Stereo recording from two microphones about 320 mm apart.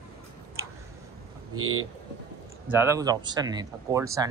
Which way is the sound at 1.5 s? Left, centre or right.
Right.